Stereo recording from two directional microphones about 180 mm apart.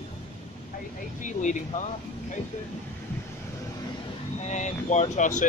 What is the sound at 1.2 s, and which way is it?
Speech, 45° left (ahead or behind).